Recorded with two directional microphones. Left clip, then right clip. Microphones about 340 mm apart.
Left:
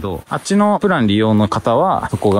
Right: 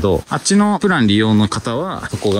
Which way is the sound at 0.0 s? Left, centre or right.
Centre.